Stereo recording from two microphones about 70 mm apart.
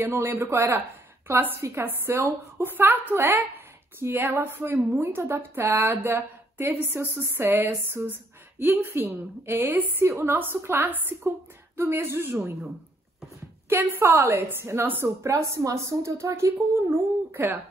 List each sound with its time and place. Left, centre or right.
0.0 s a woman's voice: right
13.7 s a woman's voice: right